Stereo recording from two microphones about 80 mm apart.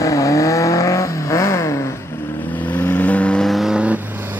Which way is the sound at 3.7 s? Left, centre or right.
Centre.